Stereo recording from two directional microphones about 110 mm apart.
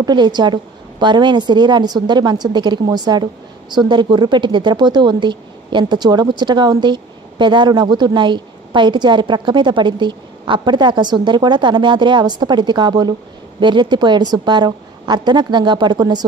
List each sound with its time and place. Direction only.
0.0 s a woman's voice: 40° right (ahead or behind)